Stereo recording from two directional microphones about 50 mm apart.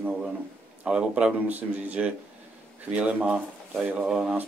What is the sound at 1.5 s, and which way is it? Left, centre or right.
Speech, right.